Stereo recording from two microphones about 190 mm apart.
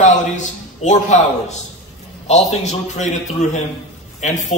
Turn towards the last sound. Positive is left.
turn(degrees=40)  # may be behind; listen again after turning